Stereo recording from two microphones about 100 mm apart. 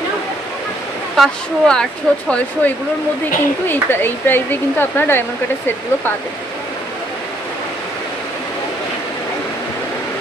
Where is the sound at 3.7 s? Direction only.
20° left (ahead or behind).